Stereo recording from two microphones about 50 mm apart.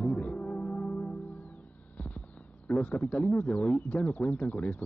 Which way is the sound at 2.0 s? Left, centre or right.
Left.